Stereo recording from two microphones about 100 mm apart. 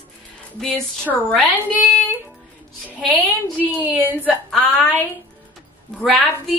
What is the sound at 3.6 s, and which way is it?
Speech, 15° right (ahead or behind).